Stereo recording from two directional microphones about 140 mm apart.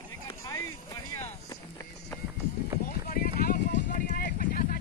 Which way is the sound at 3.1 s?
90° left.